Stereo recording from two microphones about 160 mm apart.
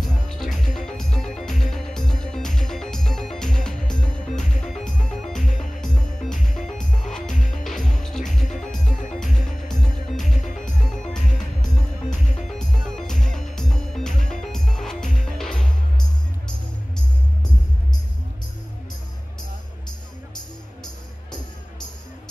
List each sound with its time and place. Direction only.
0.0 s music: 5° left (ahead or behind)
8.8 s music: 55° left (ahead or behind)
9.3 s music: 5° left (ahead or behind)
12.4 s music: 5° left (ahead or behind)
20.8 s music: 25° left (ahead or behind)